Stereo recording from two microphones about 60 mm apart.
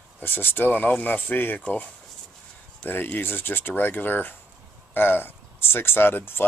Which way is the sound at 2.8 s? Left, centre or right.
Left.